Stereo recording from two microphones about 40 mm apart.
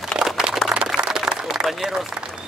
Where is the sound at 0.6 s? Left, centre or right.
Centre.